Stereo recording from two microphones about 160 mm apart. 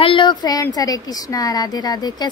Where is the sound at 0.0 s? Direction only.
30° left (ahead or behind).